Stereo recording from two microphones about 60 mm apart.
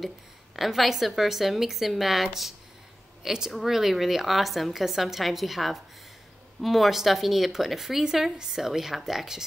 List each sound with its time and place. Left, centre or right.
0.6 s speech: centre